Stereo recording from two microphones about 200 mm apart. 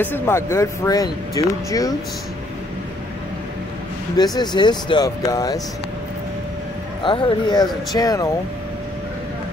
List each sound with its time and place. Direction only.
0.0 s speech: 10° left (ahead or behind)
4.4 s speech: 20° left (ahead or behind)
7.0 s speech: 25° left (ahead or behind)